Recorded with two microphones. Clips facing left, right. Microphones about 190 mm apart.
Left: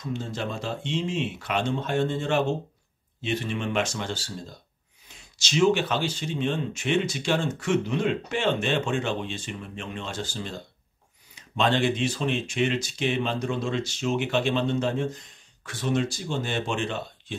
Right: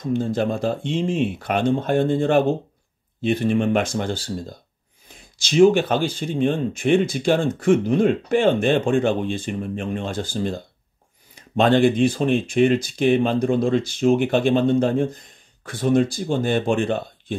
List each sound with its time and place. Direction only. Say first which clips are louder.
0.0 s speech: right 10 dB; 55° right (ahead or behind)